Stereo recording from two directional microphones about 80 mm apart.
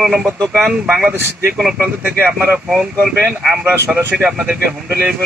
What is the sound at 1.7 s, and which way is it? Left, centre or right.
Speech, right.